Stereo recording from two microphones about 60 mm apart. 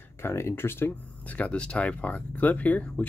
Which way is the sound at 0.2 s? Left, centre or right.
Left.